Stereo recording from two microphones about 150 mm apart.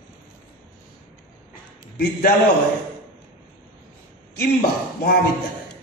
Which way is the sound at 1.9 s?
75° left (ahead or behind).